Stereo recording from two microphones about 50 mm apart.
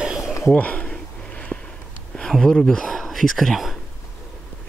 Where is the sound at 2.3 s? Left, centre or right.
Centre.